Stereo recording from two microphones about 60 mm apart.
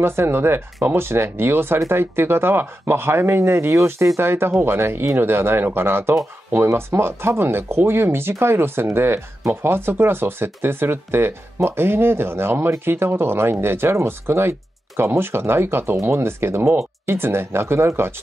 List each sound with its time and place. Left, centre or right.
0.0 s speech: right
4.2 s speech: right